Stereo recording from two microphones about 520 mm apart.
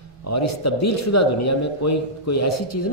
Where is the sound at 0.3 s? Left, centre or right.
Left.